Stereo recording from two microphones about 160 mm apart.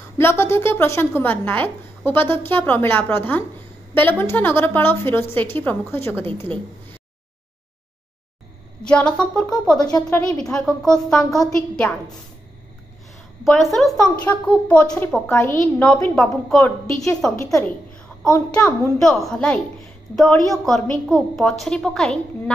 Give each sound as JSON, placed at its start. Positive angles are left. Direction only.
{"t": 0.2, "sound": "a woman's voice", "side_deg": 15}
{"t": 8.8, "sound": "a woman's voice", "side_deg": 5}
{"t": 9.8, "sound": "speech", "side_deg": 25}
{"t": 10.0, "sound": "a woman's voice", "side_deg": 5}
{"t": 13.4, "sound": "a woman's voice", "side_deg": 0}
{"t": 15.3, "sound": "a woman's voice", "side_deg": 15}
{"t": 17.4, "sound": "a woman's voice", "side_deg": 20}
{"t": 18.2, "sound": "a woman's voice", "side_deg": 5}